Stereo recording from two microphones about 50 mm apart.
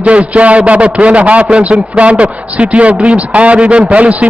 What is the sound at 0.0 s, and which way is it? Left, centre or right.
A man's voice, right.